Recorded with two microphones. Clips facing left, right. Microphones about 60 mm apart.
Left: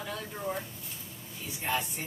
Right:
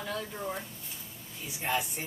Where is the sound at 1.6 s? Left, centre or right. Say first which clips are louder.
Right 1 dB; centre.